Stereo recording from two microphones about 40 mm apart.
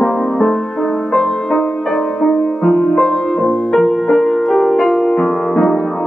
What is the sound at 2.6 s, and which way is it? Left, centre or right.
Music, centre.